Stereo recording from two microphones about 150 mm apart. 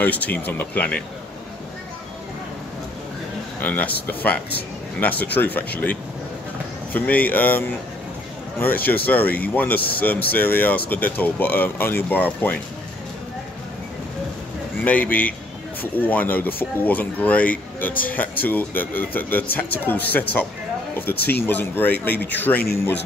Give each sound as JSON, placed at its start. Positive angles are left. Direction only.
{"t": 0.0, "sound": "speech", "side_deg": 10}
{"t": 3.5, "sound": "speech", "side_deg": 10}
{"t": 14.9, "sound": "speech", "side_deg": 10}
{"t": 21.1, "sound": "speech", "side_deg": 90}
{"t": 21.4, "sound": "speech", "side_deg": 15}